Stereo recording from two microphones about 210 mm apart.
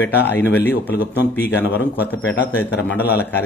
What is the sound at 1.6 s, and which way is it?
Speech, 50° left (ahead or behind).